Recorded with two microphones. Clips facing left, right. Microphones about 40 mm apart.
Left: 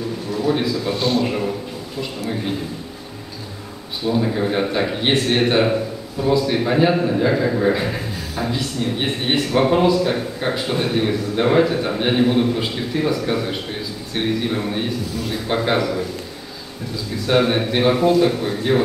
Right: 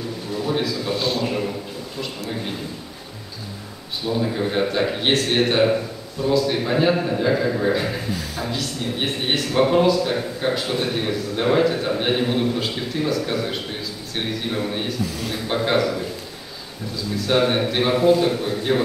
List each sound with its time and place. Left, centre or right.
0.5 s speech: centre
4.0 s speech: centre
14.1 s speech: centre